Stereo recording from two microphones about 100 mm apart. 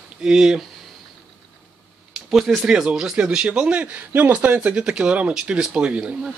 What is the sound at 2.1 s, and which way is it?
Speech, centre (ahead or behind).